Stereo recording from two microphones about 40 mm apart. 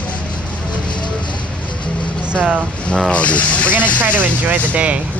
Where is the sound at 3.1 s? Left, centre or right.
Left.